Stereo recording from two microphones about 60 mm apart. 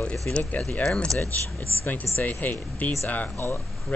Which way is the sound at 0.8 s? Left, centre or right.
Centre.